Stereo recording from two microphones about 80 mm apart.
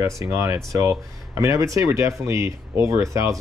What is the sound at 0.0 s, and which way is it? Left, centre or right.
Speech, right.